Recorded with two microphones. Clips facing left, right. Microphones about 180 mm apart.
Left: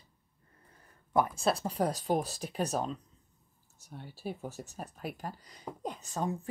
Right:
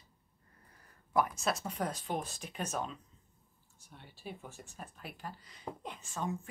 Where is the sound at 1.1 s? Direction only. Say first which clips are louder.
Left 3 dB; 30° left (ahead or behind).